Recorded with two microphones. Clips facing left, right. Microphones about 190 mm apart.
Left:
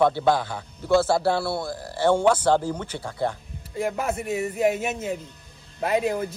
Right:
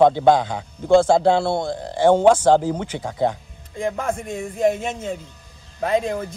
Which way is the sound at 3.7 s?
5° left (ahead or behind).